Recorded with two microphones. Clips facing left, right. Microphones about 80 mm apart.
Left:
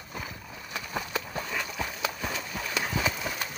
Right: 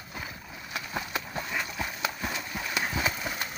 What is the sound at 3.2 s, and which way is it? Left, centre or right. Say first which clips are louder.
Run: even; right.